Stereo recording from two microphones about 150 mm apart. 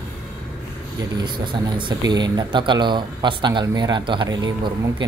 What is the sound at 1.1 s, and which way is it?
Speech, 30° right (ahead or behind).